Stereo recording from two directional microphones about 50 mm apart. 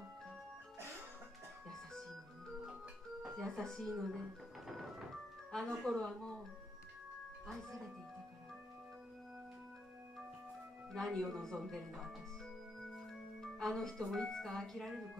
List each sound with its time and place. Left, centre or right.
1.7 s organ: centre
3.3 s speech: centre
4.0 s music: centre
5.5 s speech: centre
7.4 s speech: centre
10.9 s speech: centre
12.9 s speech: centre